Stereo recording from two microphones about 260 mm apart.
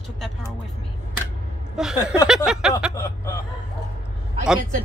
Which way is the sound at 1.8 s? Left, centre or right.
Centre.